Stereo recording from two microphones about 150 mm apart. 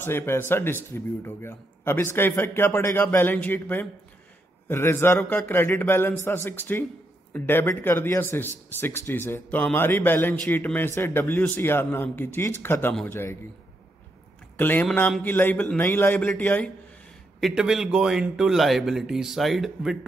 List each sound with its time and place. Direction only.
0.0 s speech: 15° left (ahead or behind)
14.6 s speech: 15° left (ahead or behind)
17.4 s a man's voice: 5° right (ahead or behind)